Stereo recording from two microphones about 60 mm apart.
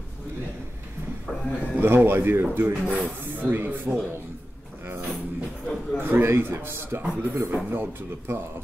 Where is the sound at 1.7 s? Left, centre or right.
Right.